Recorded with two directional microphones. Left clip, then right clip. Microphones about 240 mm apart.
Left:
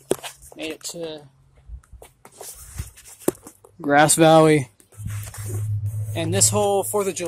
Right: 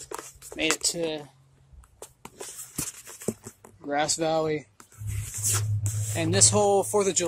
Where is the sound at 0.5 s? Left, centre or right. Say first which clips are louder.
Right 6 dB; centre.